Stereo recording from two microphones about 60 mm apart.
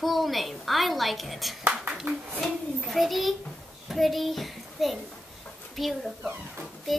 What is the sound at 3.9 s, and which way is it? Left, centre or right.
A child's voice, centre.